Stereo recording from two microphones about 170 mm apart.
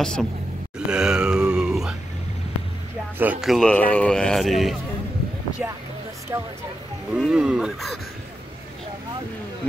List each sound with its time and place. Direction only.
0.0 s speech: 5° left (ahead or behind)
0.7 s groan: 5° right (ahead or behind)
3.2 s speech: 5° right (ahead or behind)
6.3 s speech: 20° right (ahead or behind)
7.1 s speech: 5° right (ahead or behind)